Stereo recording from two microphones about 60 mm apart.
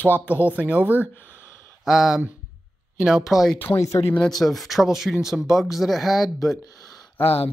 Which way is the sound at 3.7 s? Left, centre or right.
Left.